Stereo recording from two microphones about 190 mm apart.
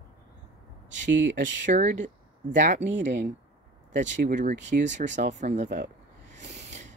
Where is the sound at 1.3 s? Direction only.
45° right (ahead or behind).